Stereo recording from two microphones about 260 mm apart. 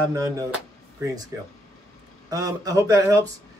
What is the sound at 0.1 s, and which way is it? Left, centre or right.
Speech, centre.